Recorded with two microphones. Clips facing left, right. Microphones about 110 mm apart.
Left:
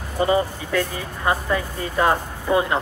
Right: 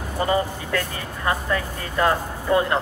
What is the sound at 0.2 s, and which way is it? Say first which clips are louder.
Speech: left 3 dB; 20° left (ahead or behind).